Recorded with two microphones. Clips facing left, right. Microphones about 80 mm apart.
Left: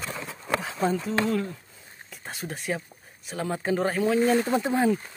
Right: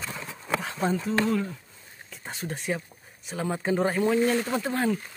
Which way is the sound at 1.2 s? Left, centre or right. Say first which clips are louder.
Even; centre.